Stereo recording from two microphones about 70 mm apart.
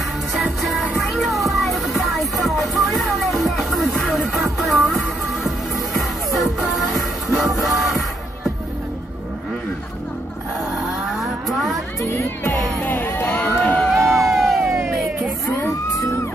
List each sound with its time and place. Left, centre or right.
0.4 s music: centre
11.1 s vehicle: centre
12.0 s music: left
12.8 s crowd: left
13.9 s crowd: centre
15.5 s emergency vehicle: left